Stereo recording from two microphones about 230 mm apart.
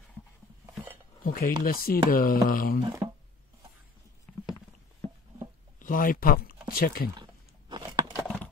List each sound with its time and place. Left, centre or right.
1.2 s speech: left
2.8 s speech: centre
4.3 s clip-clop: centre
5.8 s speech: left
7.2 s a sound: centre